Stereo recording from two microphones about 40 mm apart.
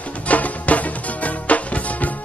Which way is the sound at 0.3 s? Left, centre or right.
Left.